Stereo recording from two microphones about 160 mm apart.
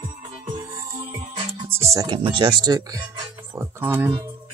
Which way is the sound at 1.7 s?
20° right (ahead or behind).